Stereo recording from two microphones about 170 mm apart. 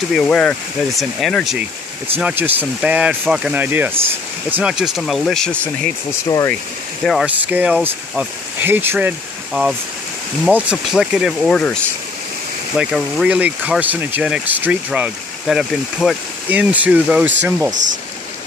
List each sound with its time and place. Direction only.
0.1 s speech: 5° left (ahead or behind)
2.1 s speech: 10° right (ahead or behind); by 5.7 s 5° left (ahead or behind)
6.2 s speech: 20° left (ahead or behind)
7.1 s speech: 5° right (ahead or behind)